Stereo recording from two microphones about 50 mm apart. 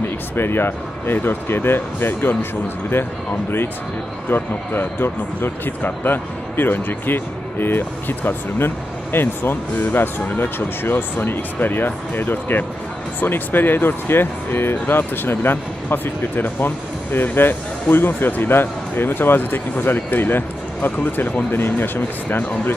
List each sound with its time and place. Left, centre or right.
0.4 s speech: left
4.3 s speech: left